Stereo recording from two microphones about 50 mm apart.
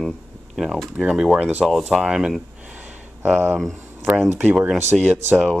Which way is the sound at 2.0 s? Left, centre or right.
Centre.